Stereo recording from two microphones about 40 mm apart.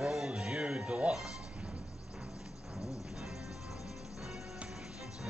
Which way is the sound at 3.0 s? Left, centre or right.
Centre.